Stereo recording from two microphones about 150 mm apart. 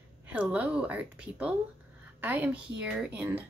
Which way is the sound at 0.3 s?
10° right (ahead or behind).